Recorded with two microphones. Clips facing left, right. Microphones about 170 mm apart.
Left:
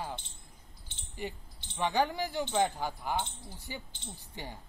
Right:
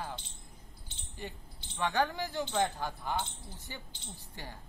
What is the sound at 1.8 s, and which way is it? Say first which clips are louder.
A woman's voice: left 2 dB; 15° left (ahead or behind).